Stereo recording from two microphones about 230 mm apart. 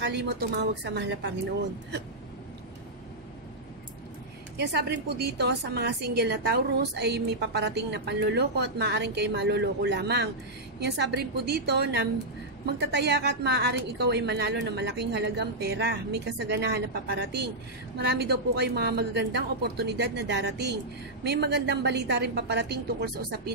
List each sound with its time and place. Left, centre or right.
0.0 s a woman's voice: right
4.6 s a woman's voice: right